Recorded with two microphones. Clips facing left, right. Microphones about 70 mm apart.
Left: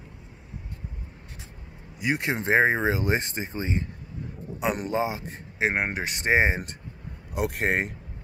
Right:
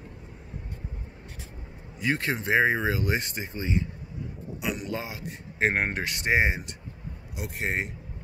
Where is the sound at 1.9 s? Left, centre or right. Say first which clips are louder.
Left 1 dB; centre.